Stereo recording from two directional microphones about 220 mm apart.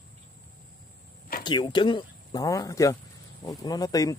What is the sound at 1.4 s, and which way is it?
A man's voice, 20° left (ahead or behind).